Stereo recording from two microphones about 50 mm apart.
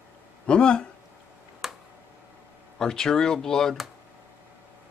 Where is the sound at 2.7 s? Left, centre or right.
Centre.